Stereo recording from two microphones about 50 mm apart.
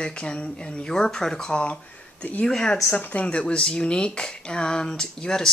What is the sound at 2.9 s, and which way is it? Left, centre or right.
Speech, left.